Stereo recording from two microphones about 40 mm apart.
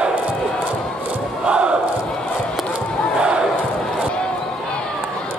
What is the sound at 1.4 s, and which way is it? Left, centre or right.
Battle cry, right.